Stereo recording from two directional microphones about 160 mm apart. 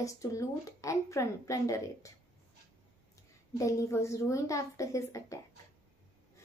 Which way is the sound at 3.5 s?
20° left (ahead or behind).